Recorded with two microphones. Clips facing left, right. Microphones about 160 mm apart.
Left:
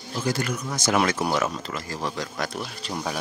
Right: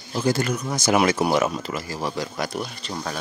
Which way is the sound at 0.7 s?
10° right (ahead or behind).